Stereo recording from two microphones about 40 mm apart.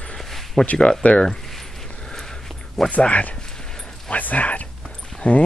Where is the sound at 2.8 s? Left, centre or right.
Left.